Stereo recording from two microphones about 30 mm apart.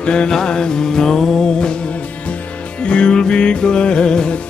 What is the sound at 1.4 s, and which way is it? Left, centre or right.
Music, left.